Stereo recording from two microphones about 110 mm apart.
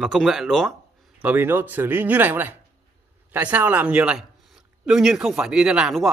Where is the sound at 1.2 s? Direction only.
15° right (ahead or behind).